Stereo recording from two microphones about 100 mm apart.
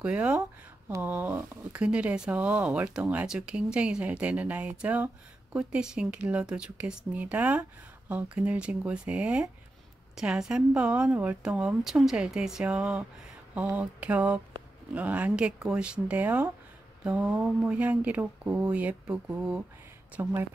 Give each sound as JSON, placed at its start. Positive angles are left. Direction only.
{"t": 0.0, "sound": "speech", "side_deg": -10}
{"t": 20.2, "sound": "speech", "side_deg": -25}